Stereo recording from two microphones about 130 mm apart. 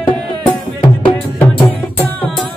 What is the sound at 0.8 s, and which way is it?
Music, 40° left (ahead or behind).